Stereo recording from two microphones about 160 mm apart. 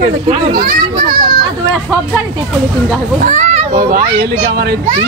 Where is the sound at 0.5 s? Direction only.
70° right (ahead or behind).